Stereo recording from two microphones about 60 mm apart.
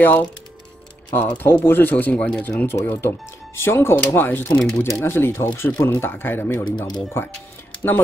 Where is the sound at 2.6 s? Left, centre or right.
Left.